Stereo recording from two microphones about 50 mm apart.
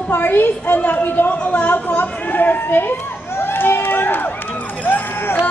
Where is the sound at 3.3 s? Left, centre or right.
Left.